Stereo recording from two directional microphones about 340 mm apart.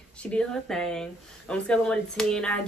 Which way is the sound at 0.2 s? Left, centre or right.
Centre.